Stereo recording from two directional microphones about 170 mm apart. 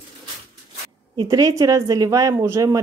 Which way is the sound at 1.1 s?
25° right (ahead or behind).